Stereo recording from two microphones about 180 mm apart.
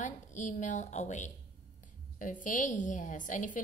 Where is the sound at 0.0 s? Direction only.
45° left (ahead or behind).